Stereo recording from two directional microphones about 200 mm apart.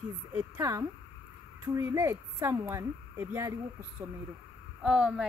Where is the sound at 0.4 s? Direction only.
15° right (ahead or behind).